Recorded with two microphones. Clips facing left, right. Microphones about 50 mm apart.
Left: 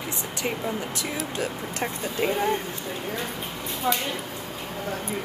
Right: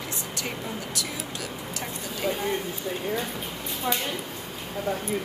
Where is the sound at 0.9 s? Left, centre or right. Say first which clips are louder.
Left 4 dB; left.